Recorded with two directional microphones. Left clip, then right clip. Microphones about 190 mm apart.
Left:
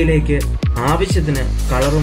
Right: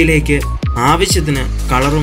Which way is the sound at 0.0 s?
20° right (ahead or behind).